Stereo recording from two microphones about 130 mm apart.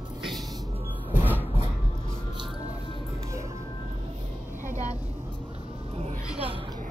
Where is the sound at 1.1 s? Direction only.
15° right (ahead or behind).